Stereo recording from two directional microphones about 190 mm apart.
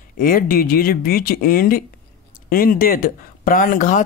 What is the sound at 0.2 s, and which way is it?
Speech, 50° left (ahead or behind).